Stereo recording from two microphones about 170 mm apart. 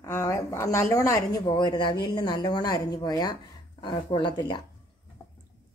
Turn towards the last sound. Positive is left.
turn(degrees=25)  # may be behind; listen again after turning